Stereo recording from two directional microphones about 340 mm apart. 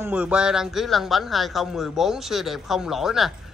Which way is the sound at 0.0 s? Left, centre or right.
Centre.